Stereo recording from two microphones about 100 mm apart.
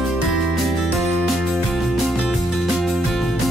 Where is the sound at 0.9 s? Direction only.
Centre (ahead or behind).